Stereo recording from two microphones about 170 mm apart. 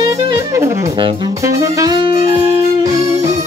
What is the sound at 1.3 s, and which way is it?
Saxophone, 20° right (ahead or behind).